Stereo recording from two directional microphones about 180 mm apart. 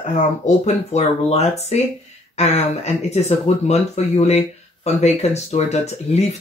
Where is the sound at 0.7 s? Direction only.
35° left (ahead or behind).